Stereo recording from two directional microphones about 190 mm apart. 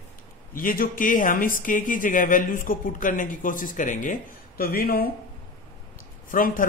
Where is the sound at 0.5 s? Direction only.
50° left (ahead or behind).